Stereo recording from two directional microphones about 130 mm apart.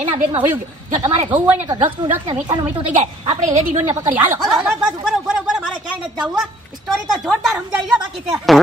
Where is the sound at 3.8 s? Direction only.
20° right (ahead or behind).